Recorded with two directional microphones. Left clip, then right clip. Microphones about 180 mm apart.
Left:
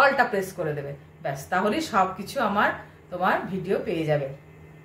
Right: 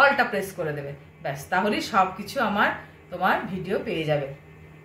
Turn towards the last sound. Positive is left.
turn(degrees=15)  # may be behind; listen again after turning